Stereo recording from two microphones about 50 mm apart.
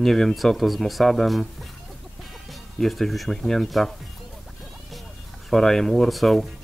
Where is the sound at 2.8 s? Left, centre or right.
Centre.